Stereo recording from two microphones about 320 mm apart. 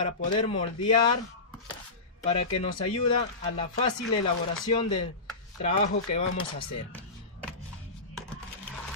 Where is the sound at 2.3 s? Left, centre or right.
Centre.